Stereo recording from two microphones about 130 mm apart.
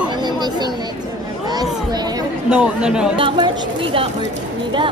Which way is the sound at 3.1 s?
40° right (ahead or behind).